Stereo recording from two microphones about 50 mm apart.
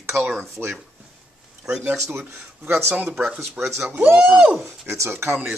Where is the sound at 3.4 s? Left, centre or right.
Right.